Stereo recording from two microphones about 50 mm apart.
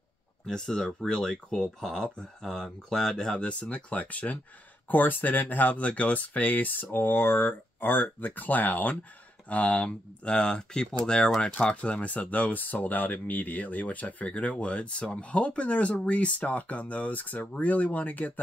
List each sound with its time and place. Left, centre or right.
0.5 s speech: centre
3.3 s speech: left
11.4 s speech: left